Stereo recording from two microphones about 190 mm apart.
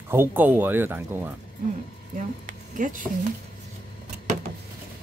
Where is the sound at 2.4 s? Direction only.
45° right (ahead or behind).